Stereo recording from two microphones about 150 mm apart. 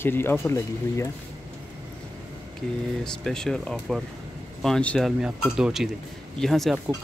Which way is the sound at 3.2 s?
5° left (ahead or behind).